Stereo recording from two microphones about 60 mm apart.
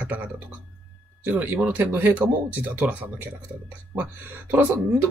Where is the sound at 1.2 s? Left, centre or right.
Right.